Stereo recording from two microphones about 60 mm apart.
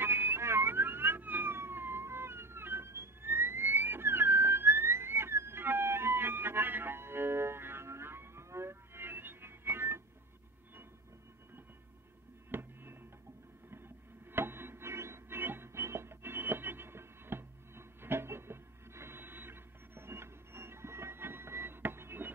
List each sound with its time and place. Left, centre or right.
0.0 s police car: right
12.4 s a sound: right
14.3 s music: right